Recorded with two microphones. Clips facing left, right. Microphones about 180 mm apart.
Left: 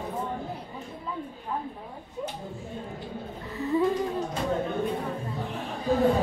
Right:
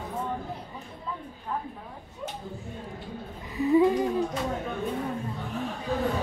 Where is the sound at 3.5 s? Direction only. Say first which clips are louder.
Right 5 dB; 15° right (ahead or behind).